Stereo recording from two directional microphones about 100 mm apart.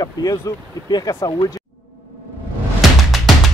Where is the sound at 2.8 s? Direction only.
Centre (ahead or behind).